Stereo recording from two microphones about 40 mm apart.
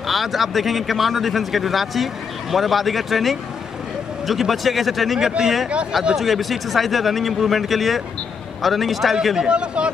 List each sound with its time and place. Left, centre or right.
0.0 s a man's voice: centre
9.5 s speech: right